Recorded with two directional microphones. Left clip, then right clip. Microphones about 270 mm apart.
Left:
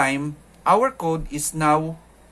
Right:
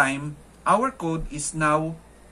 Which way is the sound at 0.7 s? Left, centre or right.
Left.